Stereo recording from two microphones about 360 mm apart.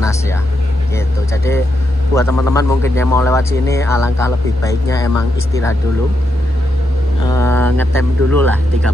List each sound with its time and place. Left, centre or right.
0.9 s a man's voice: centre
7.2 s speech: centre